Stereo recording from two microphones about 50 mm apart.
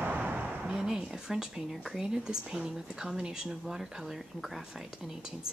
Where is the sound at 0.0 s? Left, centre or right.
Right.